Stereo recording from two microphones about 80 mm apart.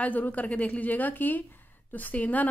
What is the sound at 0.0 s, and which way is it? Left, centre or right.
A woman's voice, centre.